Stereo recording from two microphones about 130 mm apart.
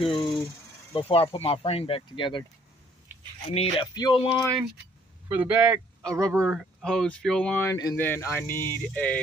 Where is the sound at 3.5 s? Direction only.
45° left (ahead or behind).